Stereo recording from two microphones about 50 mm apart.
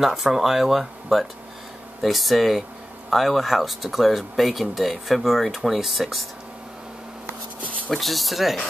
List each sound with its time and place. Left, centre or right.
0.0 s speech: centre
7.9 s speech: centre